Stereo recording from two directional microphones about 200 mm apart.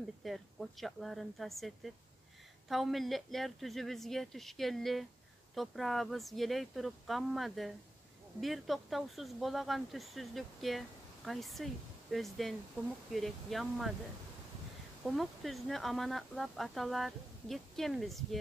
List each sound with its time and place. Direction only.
0.2 s speech: centre (ahead or behind)
2.7 s speech: centre (ahead or behind)
15.0 s speech: centre (ahead or behind)